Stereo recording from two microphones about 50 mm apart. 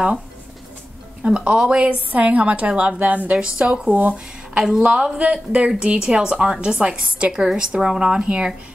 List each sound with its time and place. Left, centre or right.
1.2 s a woman's voice: right
3.3 s a woman's voice: centre